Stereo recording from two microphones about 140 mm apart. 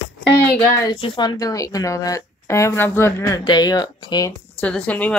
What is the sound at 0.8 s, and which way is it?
Speech, 35° left (ahead or behind).